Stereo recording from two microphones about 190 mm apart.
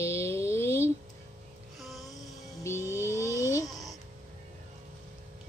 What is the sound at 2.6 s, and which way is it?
Music, 15° left (ahead or behind).